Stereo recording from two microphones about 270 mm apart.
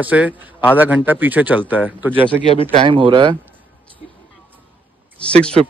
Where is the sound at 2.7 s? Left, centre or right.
Centre.